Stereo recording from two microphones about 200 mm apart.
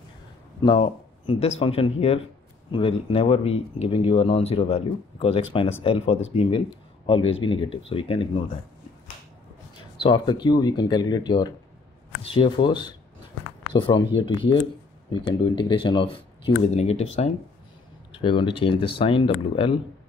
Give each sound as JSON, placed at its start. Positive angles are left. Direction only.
{"t": 0.7, "sound": "speech", "side_deg": 30}
{"t": 9.9, "sound": "speech", "side_deg": 25}